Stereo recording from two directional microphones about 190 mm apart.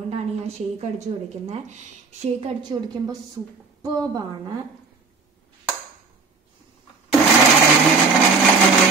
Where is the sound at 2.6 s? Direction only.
20° right (ahead or behind).